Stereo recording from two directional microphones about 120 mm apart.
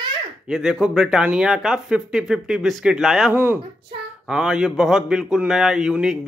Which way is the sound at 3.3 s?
15° right (ahead or behind).